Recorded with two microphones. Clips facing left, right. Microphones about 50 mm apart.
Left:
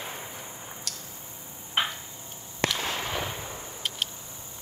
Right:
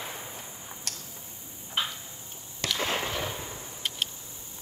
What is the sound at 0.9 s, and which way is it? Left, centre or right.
Tick-tock, right.